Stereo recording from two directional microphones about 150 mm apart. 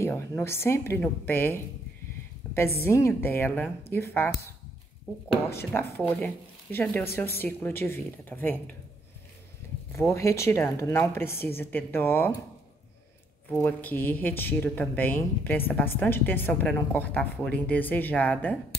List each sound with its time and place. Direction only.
0.0 s speech: 15° left (ahead or behind)
5.5 s speech: 15° left (ahead or behind)
9.9 s speech: 20° left (ahead or behind)
13.5 s speech: 15° left (ahead or behind)